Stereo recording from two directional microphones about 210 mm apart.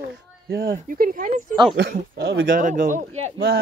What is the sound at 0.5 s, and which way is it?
Speech, 50° right (ahead or behind).